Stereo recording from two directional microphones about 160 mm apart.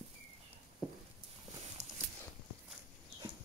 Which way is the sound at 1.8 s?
45° right (ahead or behind).